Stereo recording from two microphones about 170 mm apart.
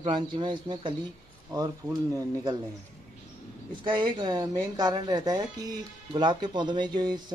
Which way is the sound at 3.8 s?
30° right (ahead or behind).